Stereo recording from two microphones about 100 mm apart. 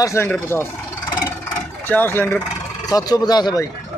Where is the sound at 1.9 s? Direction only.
20° left (ahead or behind).